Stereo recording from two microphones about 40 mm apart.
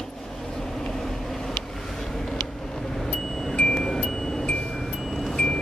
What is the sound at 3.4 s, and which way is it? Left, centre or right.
Music, centre.